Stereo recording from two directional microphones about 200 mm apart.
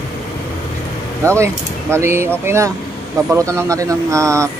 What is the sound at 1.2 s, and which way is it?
Speech, 15° right (ahead or behind).